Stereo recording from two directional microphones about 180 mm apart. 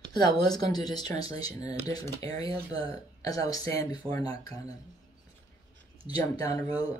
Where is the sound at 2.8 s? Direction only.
20° left (ahead or behind).